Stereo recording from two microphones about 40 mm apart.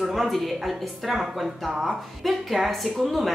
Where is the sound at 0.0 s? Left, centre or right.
Centre.